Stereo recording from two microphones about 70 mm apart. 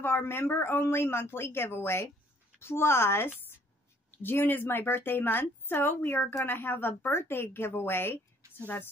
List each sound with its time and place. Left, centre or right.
0.0 s a woman's voice: left